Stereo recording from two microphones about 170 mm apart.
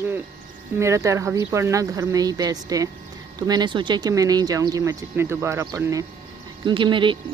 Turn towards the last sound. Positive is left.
turn(degrees=-30)  # may be behind; listen again after turning